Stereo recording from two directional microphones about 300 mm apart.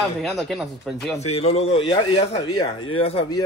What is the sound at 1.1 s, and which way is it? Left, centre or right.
Speech, left.